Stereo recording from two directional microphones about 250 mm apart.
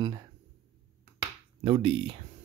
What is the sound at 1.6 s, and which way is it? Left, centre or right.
Speech, right.